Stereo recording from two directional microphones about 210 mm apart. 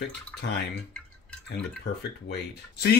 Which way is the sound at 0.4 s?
50° left (ahead or behind).